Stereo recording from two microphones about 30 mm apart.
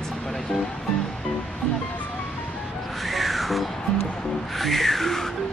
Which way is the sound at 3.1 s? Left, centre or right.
Centre.